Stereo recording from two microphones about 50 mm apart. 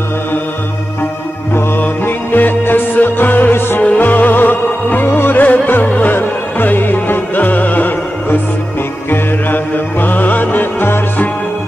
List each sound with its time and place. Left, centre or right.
1.5 s music: left